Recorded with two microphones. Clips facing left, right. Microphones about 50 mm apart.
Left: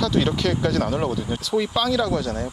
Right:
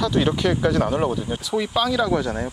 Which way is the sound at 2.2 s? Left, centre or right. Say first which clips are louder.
Right 1 dB; right.